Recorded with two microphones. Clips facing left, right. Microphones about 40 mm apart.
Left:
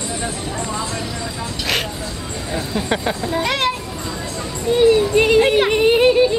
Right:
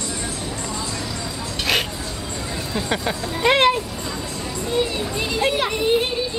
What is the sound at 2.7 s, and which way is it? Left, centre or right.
Speech, centre.